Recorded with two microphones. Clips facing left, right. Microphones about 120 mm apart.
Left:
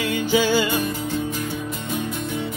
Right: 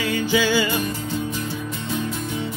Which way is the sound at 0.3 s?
45° left (ahead or behind).